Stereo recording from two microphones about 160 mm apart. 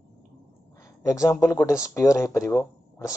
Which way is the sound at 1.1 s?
15° left (ahead or behind).